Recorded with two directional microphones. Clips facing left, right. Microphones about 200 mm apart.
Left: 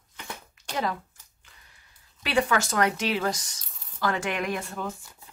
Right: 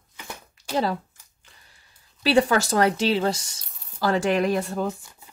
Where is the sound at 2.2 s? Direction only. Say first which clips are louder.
Right 5 dB; 35° right (ahead or behind).